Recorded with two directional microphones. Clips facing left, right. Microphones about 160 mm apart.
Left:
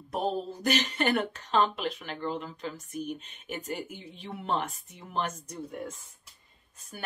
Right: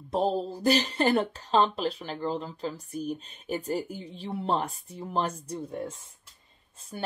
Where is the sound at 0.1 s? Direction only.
30° right (ahead or behind).